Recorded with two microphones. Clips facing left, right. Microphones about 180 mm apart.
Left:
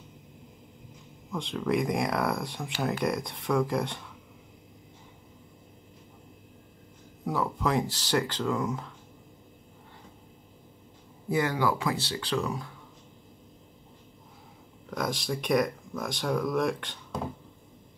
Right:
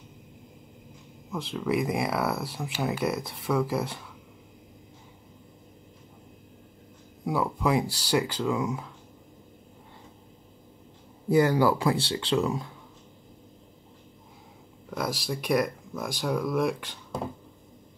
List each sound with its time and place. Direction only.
1.3 s speech: 5° right (ahead or behind)
7.2 s speech: 10° right (ahead or behind)
11.2 s speech: 35° right (ahead or behind)
14.9 s speech: 5° right (ahead or behind)